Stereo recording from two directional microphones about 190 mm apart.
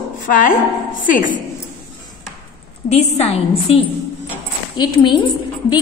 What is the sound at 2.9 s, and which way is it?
Speech, 35° left (ahead or behind).